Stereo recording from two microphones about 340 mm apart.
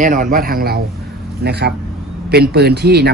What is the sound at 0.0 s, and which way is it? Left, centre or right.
Speech, right.